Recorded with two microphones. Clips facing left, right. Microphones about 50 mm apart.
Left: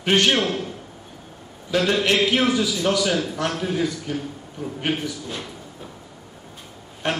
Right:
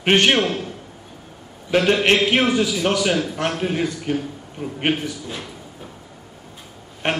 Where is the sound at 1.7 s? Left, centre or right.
Right.